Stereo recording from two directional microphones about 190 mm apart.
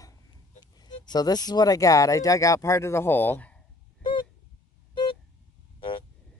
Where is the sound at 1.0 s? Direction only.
20° left (ahead or behind).